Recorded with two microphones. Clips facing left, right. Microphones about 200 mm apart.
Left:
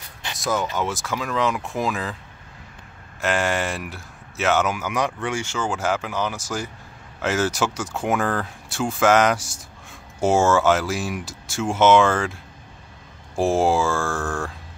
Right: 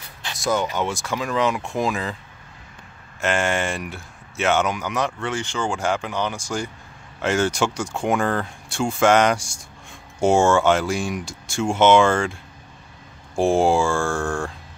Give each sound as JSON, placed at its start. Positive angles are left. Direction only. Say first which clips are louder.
{"t": 0.4, "sound": "speech", "louder": "right 2 dB", "side_deg": 0}
{"t": 3.2, "sound": "speech", "louder": "right 1 dB", "side_deg": 0}
{"t": 13.4, "sound": "speech", "louder": "right 2 dB", "side_deg": 0}